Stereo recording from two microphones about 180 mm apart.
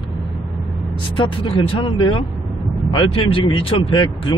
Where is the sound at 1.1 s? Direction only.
30° left (ahead or behind).